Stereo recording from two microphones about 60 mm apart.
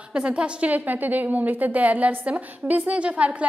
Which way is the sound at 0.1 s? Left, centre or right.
Centre.